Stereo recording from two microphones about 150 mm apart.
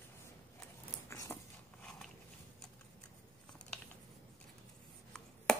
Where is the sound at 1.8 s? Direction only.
5° left (ahead or behind).